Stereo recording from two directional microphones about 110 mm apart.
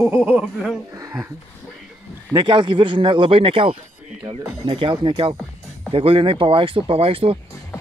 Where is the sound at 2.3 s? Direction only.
45° right (ahead or behind).